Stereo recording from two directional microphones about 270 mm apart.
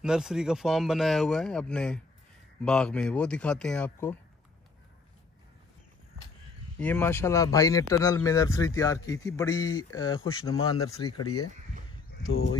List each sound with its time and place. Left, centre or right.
0.0 s speech: centre
6.8 s a man's voice: centre
11.1 s speech: left